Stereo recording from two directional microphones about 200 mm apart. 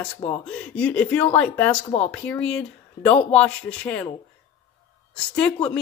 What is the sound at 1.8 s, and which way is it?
Speech, 25° left (ahead or behind).